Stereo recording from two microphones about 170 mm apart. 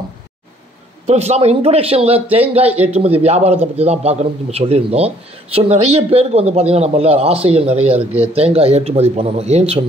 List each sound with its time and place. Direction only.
1.0 s a man's voice: 40° right (ahead or behind)
8.0 s a man's voice: 10° right (ahead or behind)
8.5 s a man's voice: 35° right (ahead or behind)